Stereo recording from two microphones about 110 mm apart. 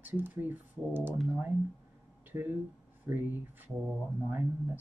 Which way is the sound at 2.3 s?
25° right (ahead or behind).